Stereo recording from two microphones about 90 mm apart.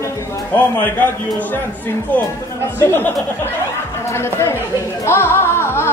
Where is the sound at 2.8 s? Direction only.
25° left (ahead or behind).